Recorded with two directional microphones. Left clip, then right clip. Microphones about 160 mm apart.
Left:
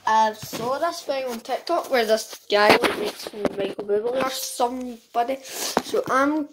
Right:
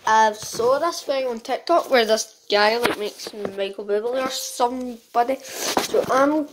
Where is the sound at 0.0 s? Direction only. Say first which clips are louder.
Right 2 dB; 30° right (ahead or behind).